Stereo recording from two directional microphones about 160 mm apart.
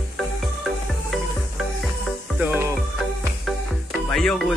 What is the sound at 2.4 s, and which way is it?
Music, 15° right (ahead or behind).